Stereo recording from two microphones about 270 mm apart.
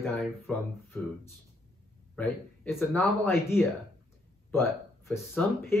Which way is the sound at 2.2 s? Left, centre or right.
Centre.